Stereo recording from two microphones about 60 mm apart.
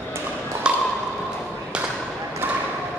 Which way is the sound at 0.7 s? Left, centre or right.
Centre.